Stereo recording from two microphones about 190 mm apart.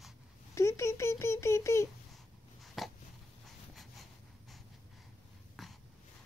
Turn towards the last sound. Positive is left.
turn(degrees=0)  # may be behind; listen again after turning